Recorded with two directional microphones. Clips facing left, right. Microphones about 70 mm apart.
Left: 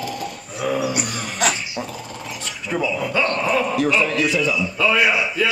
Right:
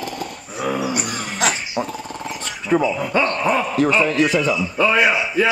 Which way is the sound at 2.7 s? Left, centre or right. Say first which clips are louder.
Right 4 dB; right.